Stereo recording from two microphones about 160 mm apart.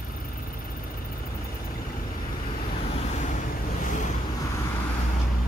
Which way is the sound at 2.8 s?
45° left (ahead or behind).